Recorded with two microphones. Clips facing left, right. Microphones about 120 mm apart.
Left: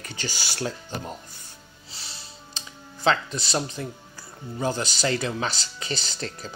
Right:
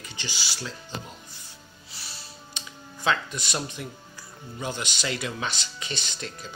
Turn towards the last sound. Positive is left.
turn(degrees=35)  # may be behind; listen again after turning